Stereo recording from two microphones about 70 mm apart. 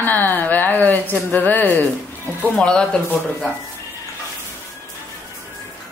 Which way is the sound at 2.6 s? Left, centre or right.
Centre.